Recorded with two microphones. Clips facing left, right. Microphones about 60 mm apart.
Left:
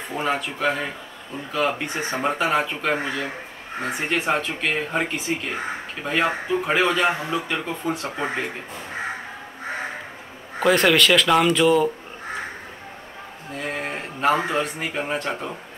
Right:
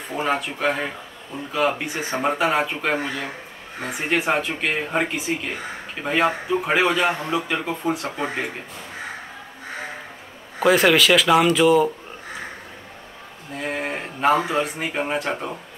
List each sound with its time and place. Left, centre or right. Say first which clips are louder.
0.2 s speech: right 1 dB; centre
4.1 s speech: right 3 dB; centre
10.6 s speech: right 1 dB; centre
13.6 s a sound: right 2 dB; centre
14.9 s speech: right 2 dB; centre